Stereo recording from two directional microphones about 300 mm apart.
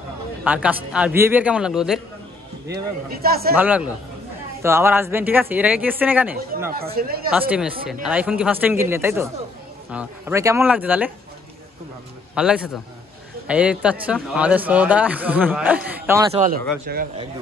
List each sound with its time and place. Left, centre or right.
0.4 s speech: centre
2.7 s a man's voice: right
3.5 s speech: centre
6.7 s speech: right
7.3 s speech: centre
12.4 s speech: centre
16.3 s speech: right